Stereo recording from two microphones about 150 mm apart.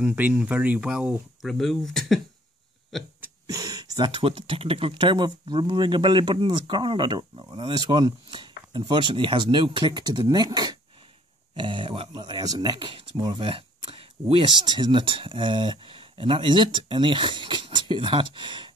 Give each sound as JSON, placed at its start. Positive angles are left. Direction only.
{"t": 0.0, "sound": "speech", "side_deg": -10}
{"t": 3.2, "sound": "speech", "side_deg": -25}